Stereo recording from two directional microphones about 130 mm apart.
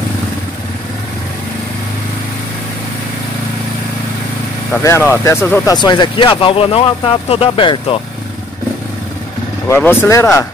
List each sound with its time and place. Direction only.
4.8 s speech: 20° left (ahead or behind)
5.8 s speech: 35° left (ahead or behind)
9.7 s speech: 15° left (ahead or behind)